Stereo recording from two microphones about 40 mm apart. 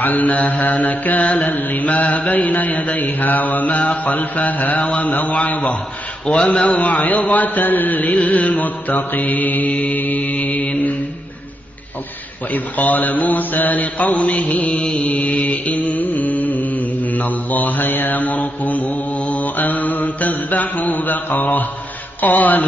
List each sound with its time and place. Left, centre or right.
0.0 s mantra: left
1.2 s a man's voice: left
1.5 s mantra: left
5.1 s a man's voice: left
6.2 s mantra: left
8.2 s mantra: left
12.5 s mantra: left